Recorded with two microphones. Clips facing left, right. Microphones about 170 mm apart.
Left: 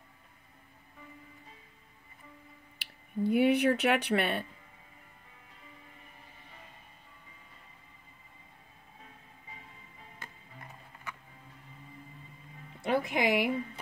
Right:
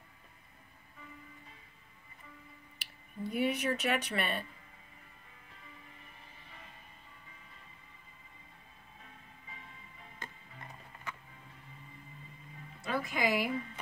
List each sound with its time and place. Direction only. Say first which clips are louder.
2.8 s speech: left 9 dB; 65° left (ahead or behind)
12.8 s music: left 5 dB; 65° left (ahead or behind)